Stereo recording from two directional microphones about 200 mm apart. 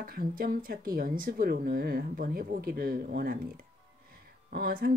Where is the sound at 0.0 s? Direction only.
45° right (ahead or behind).